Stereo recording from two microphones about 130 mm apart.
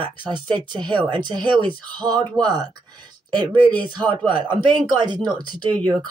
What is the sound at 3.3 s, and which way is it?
Speech, 35° right (ahead or behind).